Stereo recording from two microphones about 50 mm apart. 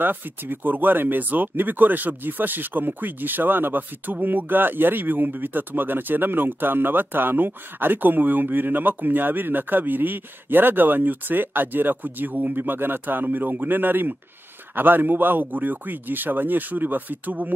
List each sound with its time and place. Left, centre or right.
0.0 s speech: right